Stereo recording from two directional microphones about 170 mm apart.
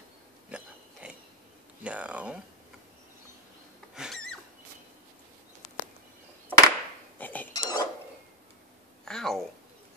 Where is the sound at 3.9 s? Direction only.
Centre (ahead or behind).